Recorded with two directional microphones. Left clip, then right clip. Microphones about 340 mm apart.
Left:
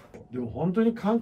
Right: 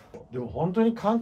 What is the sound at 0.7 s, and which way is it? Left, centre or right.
Speech, centre.